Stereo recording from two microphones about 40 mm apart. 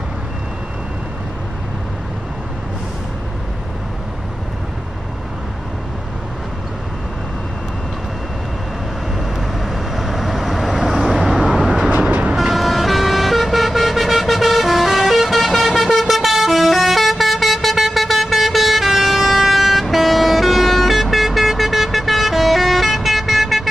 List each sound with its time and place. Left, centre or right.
9.7 s vehicle: centre
12.1 s vehicle: right
12.4 s vehicle: centre